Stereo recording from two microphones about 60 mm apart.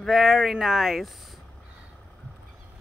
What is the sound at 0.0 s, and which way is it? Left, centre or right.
Speech, centre.